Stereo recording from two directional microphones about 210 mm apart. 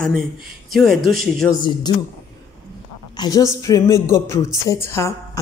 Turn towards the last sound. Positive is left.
turn(degrees=10)  # may be behind; listen again after turning